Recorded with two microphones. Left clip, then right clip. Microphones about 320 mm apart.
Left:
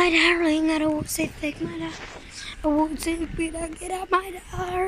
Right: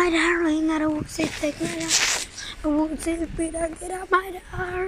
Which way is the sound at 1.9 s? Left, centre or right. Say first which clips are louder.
Right 16 dB; right.